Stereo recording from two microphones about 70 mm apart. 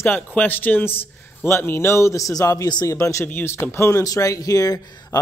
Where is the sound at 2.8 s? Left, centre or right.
Left.